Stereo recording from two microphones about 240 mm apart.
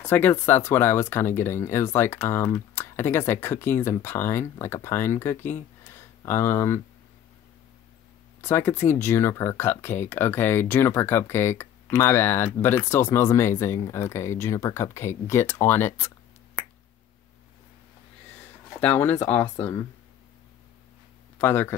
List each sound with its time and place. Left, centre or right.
0.0 s speech: centre
5.9 s a sound: centre
8.4 s speech: centre
18.8 s speech: centre
21.4 s speech: centre